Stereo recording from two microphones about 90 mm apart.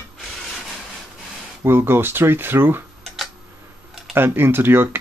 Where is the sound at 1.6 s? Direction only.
30° right (ahead or behind).